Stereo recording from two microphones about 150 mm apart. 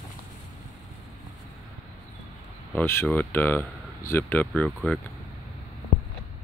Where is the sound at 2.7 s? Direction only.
15° left (ahead or behind).